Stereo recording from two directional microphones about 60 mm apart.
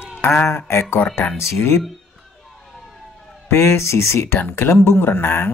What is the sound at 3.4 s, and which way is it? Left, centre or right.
Speech, left.